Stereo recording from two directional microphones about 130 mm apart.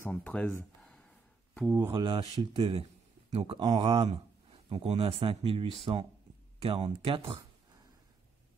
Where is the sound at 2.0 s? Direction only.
40° right (ahead or behind).